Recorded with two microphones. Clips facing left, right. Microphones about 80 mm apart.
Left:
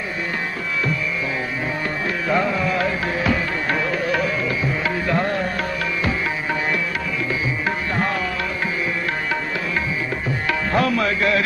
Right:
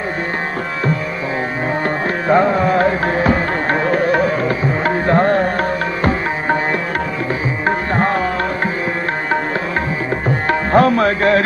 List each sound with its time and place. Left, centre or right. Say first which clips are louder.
2.2 s music: right 8 dB; right
7.6 s tabla: right 9 dB; right
10.5 s music: right 7 dB; right